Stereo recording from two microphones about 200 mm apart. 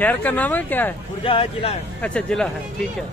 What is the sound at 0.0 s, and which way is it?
Speech, 10° left (ahead or behind).